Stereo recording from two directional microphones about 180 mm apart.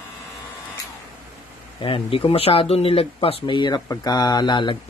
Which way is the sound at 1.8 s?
30° left (ahead or behind).